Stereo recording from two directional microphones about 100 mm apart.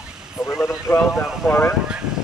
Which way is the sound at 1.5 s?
25° left (ahead or behind).